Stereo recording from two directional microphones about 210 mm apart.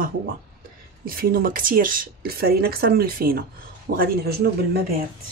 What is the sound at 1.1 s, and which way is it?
Speech, 45° right (ahead or behind).